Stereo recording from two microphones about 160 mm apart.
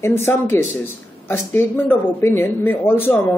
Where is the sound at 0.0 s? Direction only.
15° left (ahead or behind).